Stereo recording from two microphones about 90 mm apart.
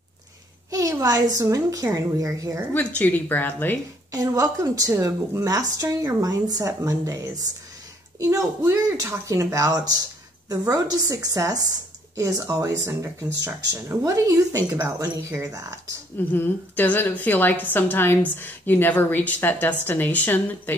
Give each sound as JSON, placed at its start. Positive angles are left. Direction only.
{"t": 0.7, "sound": "a woman's voice", "side_deg": -40}
{"t": 2.7, "sound": "a woman's voice", "side_deg": 15}
{"t": 4.1, "sound": "a woman's voice", "side_deg": -40}
{"t": 16.2, "sound": "a woman's voice", "side_deg": 20}